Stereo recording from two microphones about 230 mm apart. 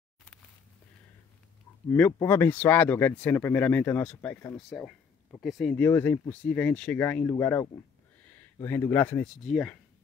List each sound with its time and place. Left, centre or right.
1.9 s speech: centre